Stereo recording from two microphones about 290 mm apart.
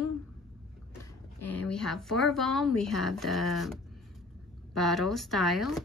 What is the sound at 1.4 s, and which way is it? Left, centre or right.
A woman's voice, centre.